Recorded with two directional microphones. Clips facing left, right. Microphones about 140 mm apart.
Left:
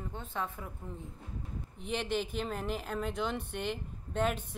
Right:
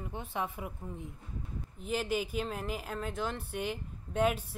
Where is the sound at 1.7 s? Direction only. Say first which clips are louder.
Right 1 dB; 5° right (ahead or behind).